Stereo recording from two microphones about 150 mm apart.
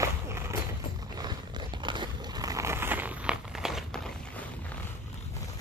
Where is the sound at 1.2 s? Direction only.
30° right (ahead or behind); by 4.4 s 5° left (ahead or behind).